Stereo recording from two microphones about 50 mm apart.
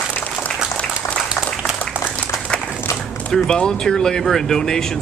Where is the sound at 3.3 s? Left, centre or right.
Centre.